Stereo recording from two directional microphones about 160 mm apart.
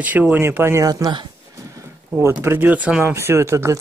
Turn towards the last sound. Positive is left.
turn(degrees=-15)  # may be behind; listen again after turning